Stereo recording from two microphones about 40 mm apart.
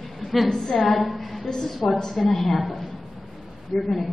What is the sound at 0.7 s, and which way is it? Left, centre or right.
Speech, centre.